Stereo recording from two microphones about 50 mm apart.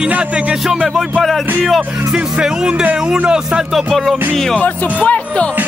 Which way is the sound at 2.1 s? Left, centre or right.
Centre.